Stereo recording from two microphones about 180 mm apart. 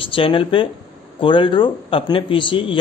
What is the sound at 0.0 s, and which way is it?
Speech, 30° left (ahead or behind).